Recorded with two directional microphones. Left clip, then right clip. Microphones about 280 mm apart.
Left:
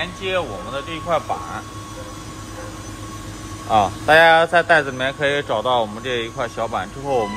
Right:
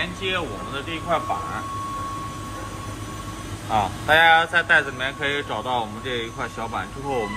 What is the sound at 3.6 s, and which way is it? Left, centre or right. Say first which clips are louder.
Speech: left 5 dB; left.